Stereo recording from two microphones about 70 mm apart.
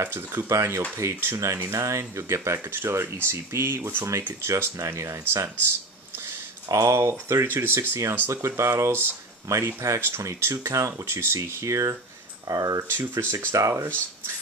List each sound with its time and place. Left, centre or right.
0.0 s speech: right
4.7 s speech: right
6.7 s speech: right
13.1 s speech: right
13.6 s speech: right